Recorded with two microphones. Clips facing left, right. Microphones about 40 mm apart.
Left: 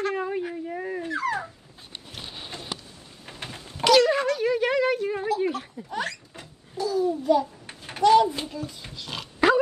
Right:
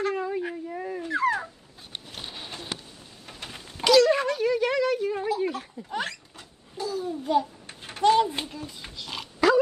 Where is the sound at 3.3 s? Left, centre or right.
Left.